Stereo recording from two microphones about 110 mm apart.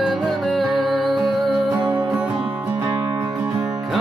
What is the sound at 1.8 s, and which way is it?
Music, 10° right (ahead or behind).